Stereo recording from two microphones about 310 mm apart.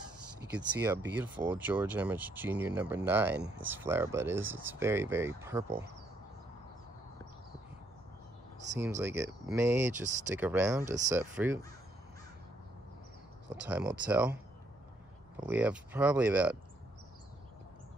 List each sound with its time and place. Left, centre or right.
0.8 s speech: centre
8.7 s speech: centre
13.6 s speech: centre
15.3 s speech: centre